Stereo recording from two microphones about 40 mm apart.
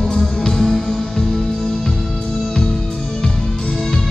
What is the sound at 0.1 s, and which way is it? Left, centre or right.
Music, centre.